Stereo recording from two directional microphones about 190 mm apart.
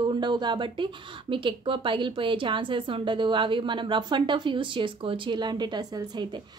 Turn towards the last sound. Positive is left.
turn(degrees=-20)  # may be behind; listen again after turning